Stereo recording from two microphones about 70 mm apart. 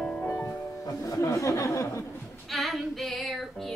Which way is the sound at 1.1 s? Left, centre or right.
Left.